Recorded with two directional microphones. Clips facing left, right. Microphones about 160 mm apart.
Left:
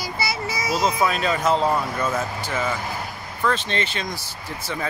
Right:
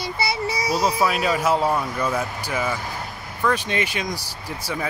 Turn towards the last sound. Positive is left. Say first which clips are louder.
# right 1 dB
turn(degrees=-10)  # may be behind; listen again after turning